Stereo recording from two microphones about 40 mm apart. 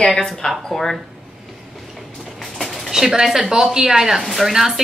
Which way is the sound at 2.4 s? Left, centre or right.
Centre.